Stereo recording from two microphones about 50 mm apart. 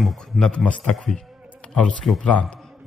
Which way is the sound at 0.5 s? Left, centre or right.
Left.